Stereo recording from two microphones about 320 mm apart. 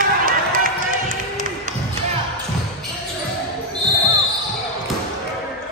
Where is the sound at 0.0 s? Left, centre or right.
Right.